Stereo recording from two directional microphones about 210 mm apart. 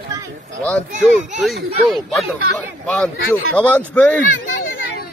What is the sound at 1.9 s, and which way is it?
Speech, centre (ahead or behind).